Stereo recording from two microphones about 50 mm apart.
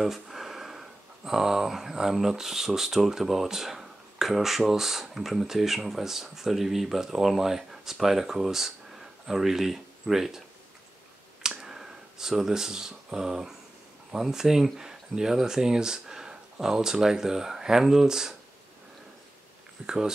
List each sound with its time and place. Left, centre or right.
0.0 s speech: centre
11.4 s a sound: centre
14.1 s speech: centre
19.8 s speech: right